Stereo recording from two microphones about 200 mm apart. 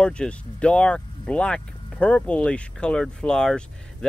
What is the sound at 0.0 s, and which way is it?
Speech, 5° left (ahead or behind).